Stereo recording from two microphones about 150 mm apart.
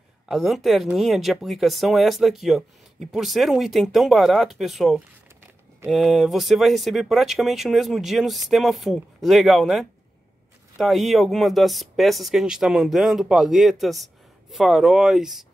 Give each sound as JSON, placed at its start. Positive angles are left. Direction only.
{"t": 0.3, "sound": "speech", "side_deg": 0}